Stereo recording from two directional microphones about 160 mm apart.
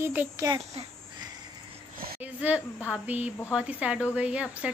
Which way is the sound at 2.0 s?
75° right (ahead or behind).